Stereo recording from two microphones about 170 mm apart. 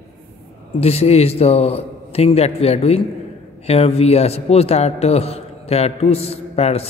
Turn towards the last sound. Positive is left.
turn(degrees=35)  # may be behind; listen again after turning